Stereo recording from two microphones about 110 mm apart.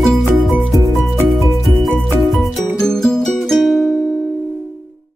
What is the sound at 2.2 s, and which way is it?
Music, centre (ahead or behind).